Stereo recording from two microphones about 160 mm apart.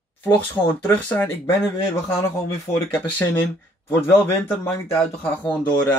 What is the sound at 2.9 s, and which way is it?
Speech, 10° left (ahead or behind).